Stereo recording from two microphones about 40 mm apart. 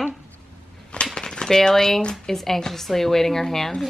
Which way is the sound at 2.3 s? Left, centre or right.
Centre.